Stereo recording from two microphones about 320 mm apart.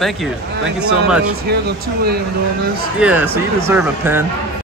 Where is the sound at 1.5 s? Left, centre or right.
Right.